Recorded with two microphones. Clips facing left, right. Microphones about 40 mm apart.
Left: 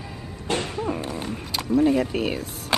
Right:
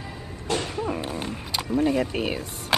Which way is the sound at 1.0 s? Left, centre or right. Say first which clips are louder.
Even; right.